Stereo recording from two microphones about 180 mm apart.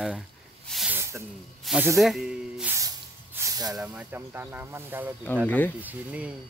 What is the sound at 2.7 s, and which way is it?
Spray, 15° right (ahead or behind).